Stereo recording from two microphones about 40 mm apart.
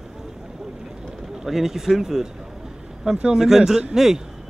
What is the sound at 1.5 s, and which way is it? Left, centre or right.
Speech, centre.